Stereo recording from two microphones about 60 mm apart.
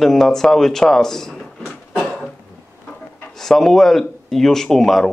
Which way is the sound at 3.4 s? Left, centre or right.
Centre.